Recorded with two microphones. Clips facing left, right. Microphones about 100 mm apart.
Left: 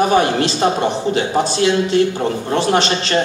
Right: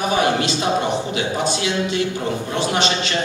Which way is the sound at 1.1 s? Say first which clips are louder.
Left 5 dB; 45° left (ahead or behind).